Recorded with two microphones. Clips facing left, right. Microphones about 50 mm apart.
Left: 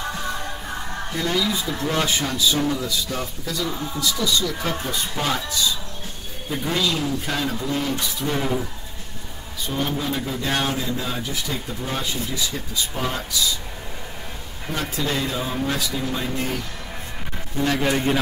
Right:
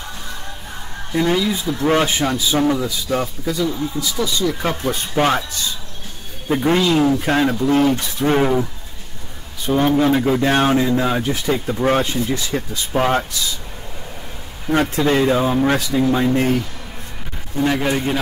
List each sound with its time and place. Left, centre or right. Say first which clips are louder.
1.1 s speech: right 6 dB; right
4.6 s speech: right 4 dB; right
9.9 s speech: right 11 dB; right
15.0 s speech: right 10 dB; right
17.6 s a man's voice: right 3 dB; centre